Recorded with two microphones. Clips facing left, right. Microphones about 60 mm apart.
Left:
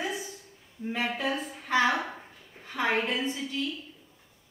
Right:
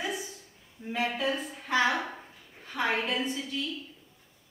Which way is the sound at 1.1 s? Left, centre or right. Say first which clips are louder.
Even; centre.